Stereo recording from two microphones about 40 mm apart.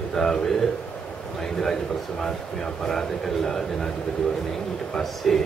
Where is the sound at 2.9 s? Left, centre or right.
Centre.